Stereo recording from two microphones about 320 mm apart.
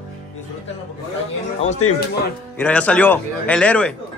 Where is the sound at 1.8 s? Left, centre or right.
Left.